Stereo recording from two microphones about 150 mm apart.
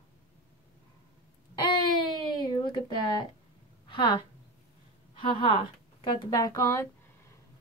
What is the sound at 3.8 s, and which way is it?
A woman's voice, 30° left (ahead or behind).